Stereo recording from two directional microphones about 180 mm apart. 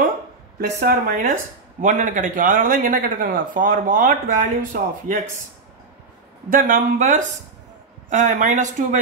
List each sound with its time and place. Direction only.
0.6 s speech: 60° right (ahead or behind)
6.5 s speech: 50° right (ahead or behind)